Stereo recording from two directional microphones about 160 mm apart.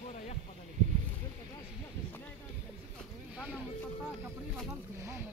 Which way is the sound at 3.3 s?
5° left (ahead or behind).